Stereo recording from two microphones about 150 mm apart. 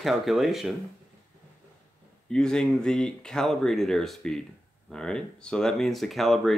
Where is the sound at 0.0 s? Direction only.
Centre (ahead or behind).